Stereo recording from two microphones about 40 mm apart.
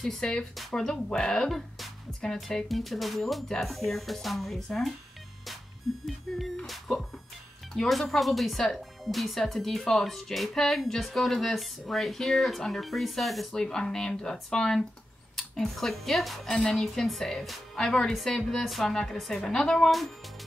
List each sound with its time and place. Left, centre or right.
0.0 s a woman's voice: centre
0.8 s a woman's voice: centre
6.0 s speech: centre
6.6 s music: centre
7.9 s a woman's voice: centre
13.5 s a woman's voice: centre